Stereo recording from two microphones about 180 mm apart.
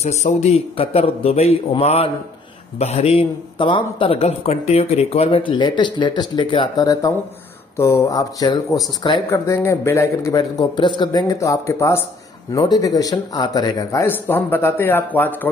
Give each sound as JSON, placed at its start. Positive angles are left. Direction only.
{"t": 0.0, "sound": "a man's voice", "side_deg": 40}